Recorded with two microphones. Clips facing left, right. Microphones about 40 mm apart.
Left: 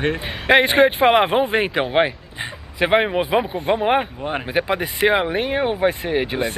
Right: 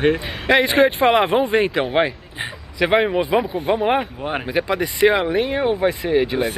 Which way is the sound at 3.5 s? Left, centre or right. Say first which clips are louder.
Even; centre.